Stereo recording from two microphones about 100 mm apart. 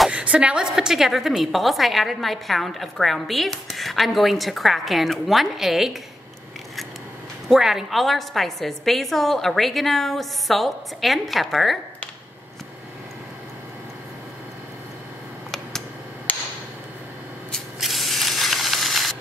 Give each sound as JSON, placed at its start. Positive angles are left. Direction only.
{"t": 0.1, "sound": "a woman's voice", "side_deg": -10}
{"t": 7.4, "sound": "a woman's voice", "side_deg": -5}
{"t": 17.7, "sound": "spray", "side_deg": 0}